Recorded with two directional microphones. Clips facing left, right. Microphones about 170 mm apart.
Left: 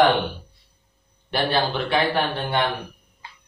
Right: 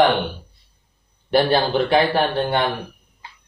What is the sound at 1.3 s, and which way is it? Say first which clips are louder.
Speech: right 5 dB; 35° right (ahead or behind).